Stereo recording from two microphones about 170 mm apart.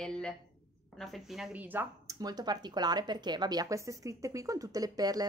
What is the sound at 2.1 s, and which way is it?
Speech, 25° right (ahead or behind).